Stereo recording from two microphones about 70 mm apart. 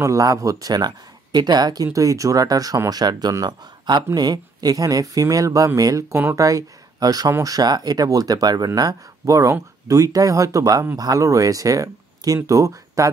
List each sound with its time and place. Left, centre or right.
0.0 s speech: right
1.9 s speech: right
2.9 s speech: right
9.2 s speech: right